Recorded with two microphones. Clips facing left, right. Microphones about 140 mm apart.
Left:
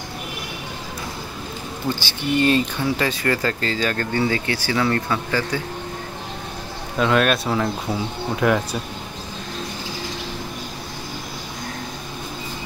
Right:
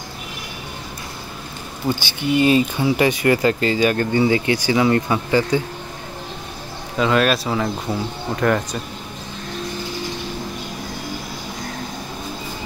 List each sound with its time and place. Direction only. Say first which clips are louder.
2.0 s speech: right 2 dB; 15° right (ahead or behind)
7.0 s speech: right 1 dB; centre (ahead or behind)